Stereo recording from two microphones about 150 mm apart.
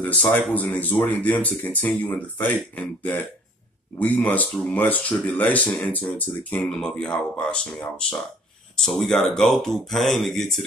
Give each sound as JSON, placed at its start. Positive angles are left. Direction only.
{"t": 0.0, "sound": "speech", "side_deg": 10}
{"t": 8.7, "sound": "speech", "side_deg": 5}